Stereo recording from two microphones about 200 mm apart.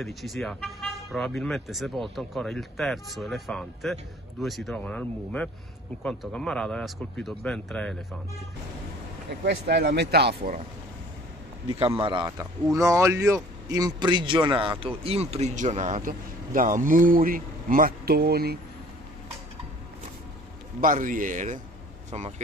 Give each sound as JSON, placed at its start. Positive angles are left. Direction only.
{"t": 0.0, "sound": "speech", "side_deg": 0}
{"t": 9.4, "sound": "speech", "side_deg": -55}
{"t": 11.8, "sound": "a man's voice", "side_deg": -25}
{"t": 20.8, "sound": "a man's voice", "side_deg": -40}